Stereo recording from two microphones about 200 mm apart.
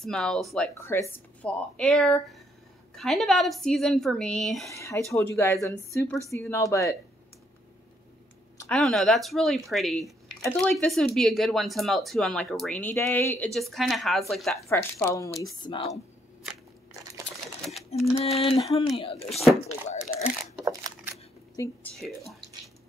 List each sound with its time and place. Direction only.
0.0 s speech: centre (ahead or behind)
0.7 s speech: 15° left (ahead or behind)
4.6 s speech: 15° left (ahead or behind)
8.5 s speech: 5° left (ahead or behind)
14.7 s speech: 15° left (ahead or behind)
17.6 s a sound: centre (ahead or behind)
18.1 s a sound: 30° left (ahead or behind)
19.2 s speech: centre (ahead or behind)
20.6 s a sound: 15° right (ahead or behind)
21.6 s speech: 15° left (ahead or behind)